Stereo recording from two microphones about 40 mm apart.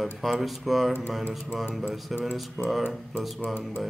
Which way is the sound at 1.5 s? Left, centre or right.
Centre.